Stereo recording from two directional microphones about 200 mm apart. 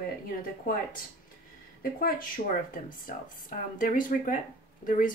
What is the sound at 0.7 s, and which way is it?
Speech, 45° left (ahead or behind).